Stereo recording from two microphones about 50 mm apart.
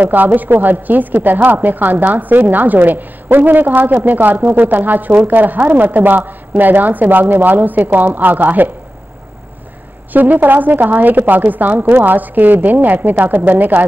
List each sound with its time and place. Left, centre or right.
0.0 s a woman's voice: right
10.1 s a woman's voice: right